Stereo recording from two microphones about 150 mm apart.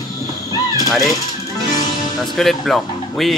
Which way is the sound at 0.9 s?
Centre (ahead or behind).